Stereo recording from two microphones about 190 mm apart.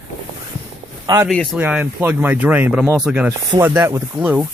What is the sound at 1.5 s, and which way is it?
Speech, 10° right (ahead or behind).